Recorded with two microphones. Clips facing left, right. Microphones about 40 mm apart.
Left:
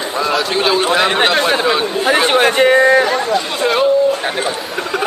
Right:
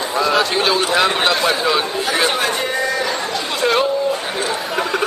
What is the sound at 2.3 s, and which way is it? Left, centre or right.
Speech, left.